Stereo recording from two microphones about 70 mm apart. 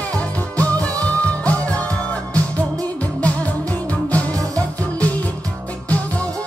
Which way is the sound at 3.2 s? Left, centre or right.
Left.